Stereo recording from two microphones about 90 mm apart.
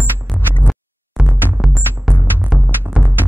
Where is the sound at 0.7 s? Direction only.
5° right (ahead or behind).